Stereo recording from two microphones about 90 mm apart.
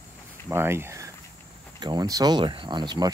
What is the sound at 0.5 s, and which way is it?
Speech, 25° right (ahead or behind).